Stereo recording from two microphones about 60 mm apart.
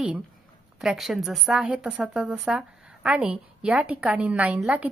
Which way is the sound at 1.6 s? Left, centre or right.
Right.